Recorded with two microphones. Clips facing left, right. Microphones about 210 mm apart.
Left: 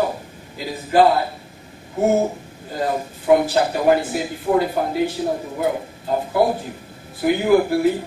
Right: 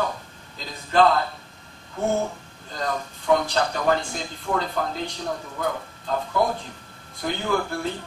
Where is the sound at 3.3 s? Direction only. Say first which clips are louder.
Left 6 dB; 10° left (ahead or behind).